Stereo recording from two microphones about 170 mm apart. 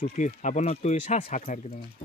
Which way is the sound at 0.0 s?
45° left (ahead or behind).